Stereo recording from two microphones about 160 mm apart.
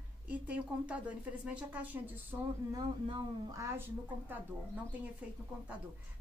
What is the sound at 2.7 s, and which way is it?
Speech, 25° right (ahead or behind).